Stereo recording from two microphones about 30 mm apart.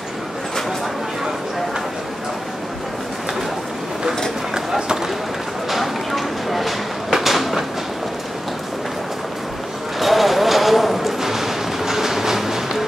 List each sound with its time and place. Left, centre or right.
4.6 s run: right
5.7 s a sound: centre
9.9 s clip-clop: centre